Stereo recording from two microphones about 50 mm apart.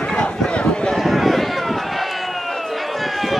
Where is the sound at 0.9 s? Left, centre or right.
Centre.